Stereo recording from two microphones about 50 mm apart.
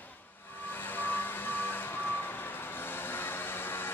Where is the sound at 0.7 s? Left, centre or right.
Left.